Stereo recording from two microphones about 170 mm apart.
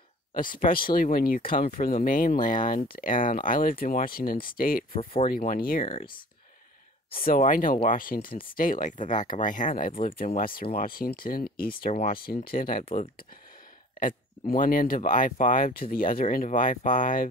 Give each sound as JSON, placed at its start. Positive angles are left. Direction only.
{"t": 0.3, "sound": "speech", "side_deg": 55}
{"t": 4.9, "sound": "speech", "side_deg": 35}
{"t": 5.3, "sound": "speech", "side_deg": 60}
{"t": 7.1, "sound": "speech", "side_deg": 60}